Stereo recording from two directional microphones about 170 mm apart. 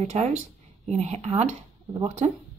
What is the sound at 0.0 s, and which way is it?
Speech, 40° right (ahead or behind).